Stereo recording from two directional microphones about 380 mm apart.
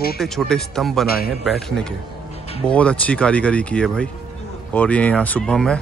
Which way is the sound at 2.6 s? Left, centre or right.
Centre.